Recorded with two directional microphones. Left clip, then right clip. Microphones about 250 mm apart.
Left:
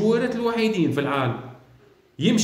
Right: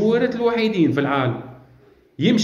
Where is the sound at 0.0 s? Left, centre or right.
Centre.